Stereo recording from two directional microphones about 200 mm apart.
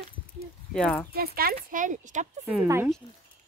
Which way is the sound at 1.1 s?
50° right (ahead or behind).